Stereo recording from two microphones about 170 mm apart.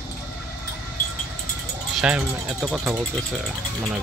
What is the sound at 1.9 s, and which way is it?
Speech, 5° right (ahead or behind).